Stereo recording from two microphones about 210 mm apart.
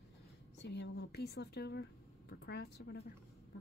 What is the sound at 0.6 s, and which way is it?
Speech, 55° left (ahead or behind).